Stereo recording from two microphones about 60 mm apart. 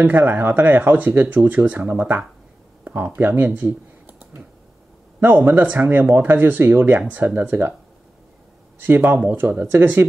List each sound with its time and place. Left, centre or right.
0.0 s speech: right
5.2 s speech: right
8.8 s speech: right